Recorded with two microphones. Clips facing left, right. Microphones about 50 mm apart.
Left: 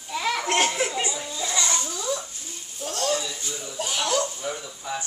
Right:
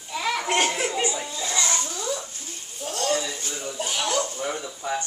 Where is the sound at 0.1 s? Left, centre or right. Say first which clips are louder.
Even; centre.